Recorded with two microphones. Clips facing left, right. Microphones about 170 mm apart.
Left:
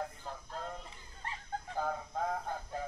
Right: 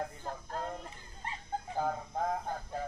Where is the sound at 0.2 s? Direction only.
50° right (ahead or behind).